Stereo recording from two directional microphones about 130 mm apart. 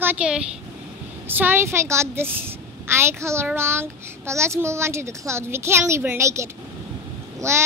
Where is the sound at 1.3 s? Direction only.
15° right (ahead or behind).